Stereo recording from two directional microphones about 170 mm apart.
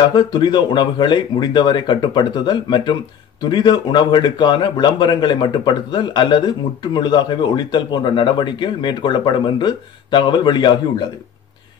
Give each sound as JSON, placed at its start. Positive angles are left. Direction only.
{"t": 0.1, "sound": "speech", "side_deg": 25}